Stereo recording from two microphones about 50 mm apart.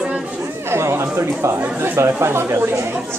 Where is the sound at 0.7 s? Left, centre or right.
Right.